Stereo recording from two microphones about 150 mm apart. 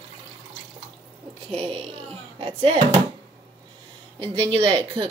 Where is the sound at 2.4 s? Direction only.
40° right (ahead or behind).